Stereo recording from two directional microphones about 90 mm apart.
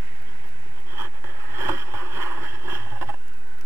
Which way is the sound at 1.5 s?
30° right (ahead or behind).